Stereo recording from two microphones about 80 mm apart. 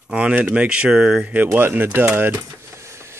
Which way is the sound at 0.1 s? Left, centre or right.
Centre.